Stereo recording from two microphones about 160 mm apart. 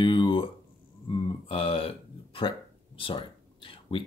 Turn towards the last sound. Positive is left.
turn(degrees=35)  # may be behind; listen again after turning